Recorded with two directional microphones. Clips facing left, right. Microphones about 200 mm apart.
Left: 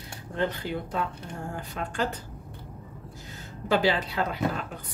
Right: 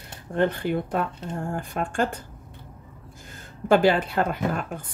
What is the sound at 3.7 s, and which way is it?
Speech, 50° right (ahead or behind).